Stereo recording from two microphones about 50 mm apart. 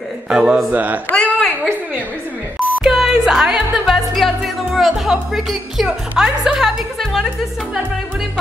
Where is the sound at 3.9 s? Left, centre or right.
Centre.